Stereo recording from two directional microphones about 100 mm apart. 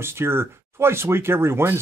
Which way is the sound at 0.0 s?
25° right (ahead or behind).